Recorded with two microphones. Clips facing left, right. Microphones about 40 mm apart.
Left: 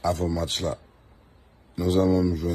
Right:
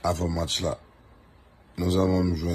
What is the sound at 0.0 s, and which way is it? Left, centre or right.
Speech, right.